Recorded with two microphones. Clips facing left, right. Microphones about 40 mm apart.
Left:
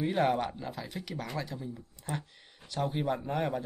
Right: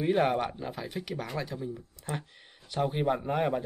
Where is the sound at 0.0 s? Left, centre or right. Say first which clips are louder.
Right 2 dB; centre.